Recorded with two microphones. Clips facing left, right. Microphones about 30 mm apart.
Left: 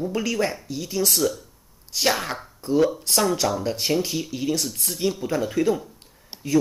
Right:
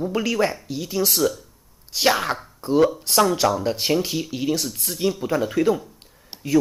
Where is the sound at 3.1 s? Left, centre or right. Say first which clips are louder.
Right 3 dB; centre.